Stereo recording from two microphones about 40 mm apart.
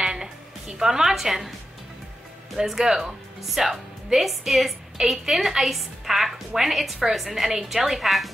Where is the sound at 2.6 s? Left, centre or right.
Centre.